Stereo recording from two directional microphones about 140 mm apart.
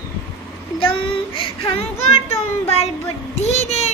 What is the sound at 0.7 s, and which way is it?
Child singing, 40° left (ahead or behind).